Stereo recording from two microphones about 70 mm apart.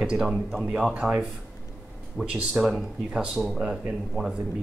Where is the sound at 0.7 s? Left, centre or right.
Centre.